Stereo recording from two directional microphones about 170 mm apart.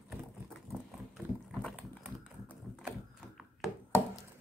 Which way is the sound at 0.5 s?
Centre (ahead or behind).